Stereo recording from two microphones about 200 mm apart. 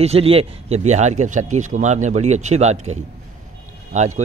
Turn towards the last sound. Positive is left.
turn(degrees=-35)  # may be behind; listen again after turning